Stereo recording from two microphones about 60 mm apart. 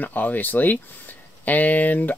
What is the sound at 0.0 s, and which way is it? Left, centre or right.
Speech, left.